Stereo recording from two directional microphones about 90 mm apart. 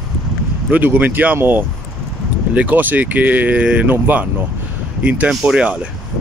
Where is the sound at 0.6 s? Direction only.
20° right (ahead or behind).